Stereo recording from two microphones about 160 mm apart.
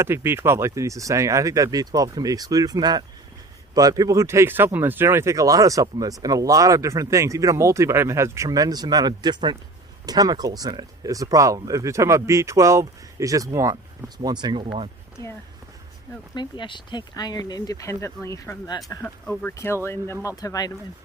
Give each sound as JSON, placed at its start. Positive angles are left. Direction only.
{"t": 0.0, "sound": "speech", "side_deg": -15}
{"t": 16.3, "sound": "speech", "side_deg": 30}
{"t": 19.0, "sound": "speech", "side_deg": 10}